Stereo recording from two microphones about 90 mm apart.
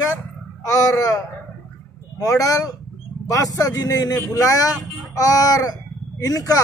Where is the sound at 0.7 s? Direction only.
40° left (ahead or behind).